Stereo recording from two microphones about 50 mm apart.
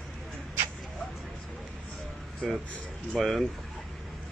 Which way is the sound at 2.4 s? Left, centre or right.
Centre.